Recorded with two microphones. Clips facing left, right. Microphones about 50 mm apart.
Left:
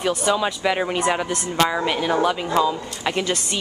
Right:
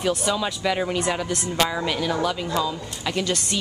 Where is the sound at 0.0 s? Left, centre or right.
Centre.